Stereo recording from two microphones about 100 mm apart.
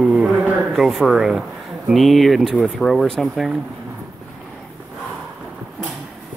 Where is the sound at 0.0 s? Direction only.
5° right (ahead or behind).